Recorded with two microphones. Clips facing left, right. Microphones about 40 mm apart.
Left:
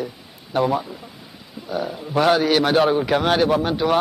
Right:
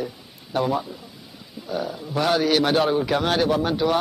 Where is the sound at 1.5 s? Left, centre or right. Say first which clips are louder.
Left 2 dB; centre.